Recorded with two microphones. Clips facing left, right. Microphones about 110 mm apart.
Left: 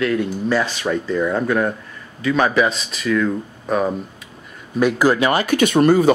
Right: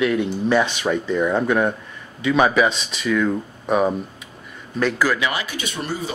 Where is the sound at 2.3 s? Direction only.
5° right (ahead or behind).